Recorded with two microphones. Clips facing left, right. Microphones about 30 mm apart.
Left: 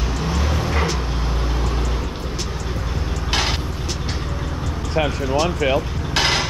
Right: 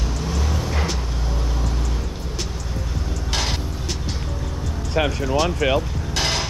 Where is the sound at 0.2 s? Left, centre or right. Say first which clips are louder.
Left 4 dB; left.